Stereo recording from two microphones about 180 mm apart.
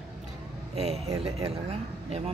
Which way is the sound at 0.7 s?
35° right (ahead or behind).